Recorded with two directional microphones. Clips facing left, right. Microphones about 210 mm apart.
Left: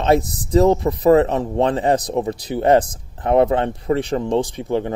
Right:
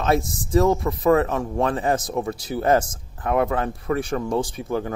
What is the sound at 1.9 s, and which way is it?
Speech, 35° left (ahead or behind).